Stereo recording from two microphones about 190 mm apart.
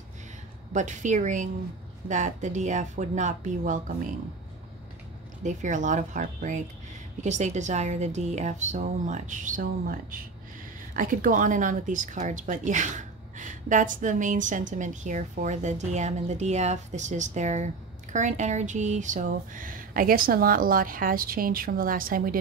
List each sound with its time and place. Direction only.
0.7 s speech: 40° right (ahead or behind)
5.4 s speech: 40° right (ahead or behind)